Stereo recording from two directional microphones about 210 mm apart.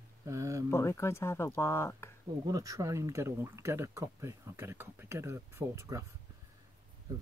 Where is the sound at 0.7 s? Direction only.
15° left (ahead or behind).